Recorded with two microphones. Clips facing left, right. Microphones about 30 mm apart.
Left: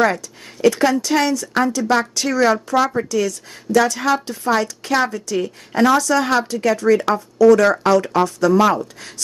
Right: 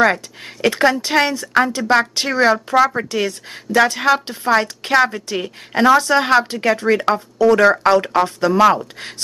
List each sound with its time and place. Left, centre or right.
0.0 s a woman's voice: right